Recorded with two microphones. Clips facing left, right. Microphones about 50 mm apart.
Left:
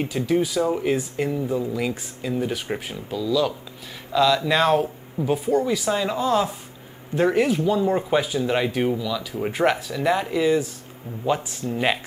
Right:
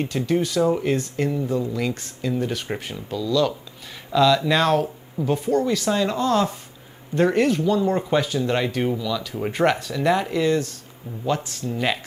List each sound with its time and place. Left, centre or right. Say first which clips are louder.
0.0 s speech: even; centre